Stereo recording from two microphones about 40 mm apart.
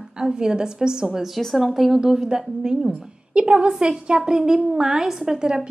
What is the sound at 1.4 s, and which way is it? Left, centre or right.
Speech, centre.